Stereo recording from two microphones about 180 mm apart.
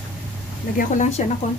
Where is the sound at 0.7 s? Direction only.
45° left (ahead or behind).